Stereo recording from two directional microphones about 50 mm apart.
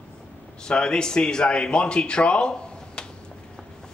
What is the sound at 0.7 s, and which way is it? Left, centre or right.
Speech, centre.